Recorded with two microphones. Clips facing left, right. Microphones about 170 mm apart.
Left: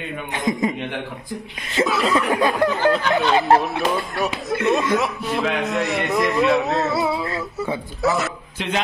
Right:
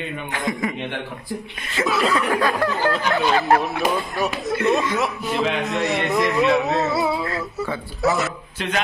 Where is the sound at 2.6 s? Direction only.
20° left (ahead or behind).